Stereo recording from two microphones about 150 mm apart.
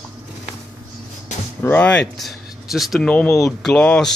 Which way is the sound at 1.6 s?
10° left (ahead or behind).